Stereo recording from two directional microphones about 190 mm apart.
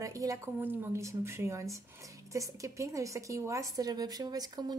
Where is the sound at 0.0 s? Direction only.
15° right (ahead or behind).